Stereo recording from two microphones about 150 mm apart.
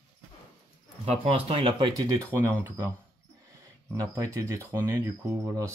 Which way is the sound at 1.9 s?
25° right (ahead or behind).